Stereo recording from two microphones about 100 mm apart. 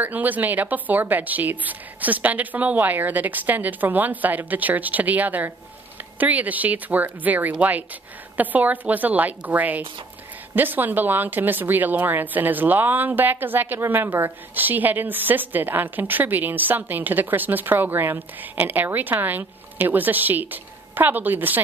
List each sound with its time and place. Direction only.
0.0 s a woman's voice: 15° right (ahead or behind)